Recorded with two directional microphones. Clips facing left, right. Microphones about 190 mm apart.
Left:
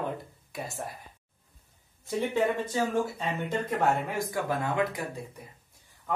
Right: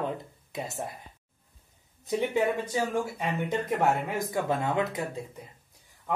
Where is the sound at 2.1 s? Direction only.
15° right (ahead or behind).